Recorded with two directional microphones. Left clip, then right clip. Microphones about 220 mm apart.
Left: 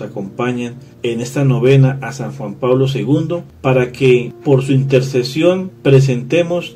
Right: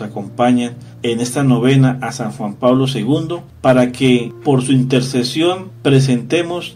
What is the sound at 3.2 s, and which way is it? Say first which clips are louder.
Speech: right 3 dB; 30° right (ahead or behind).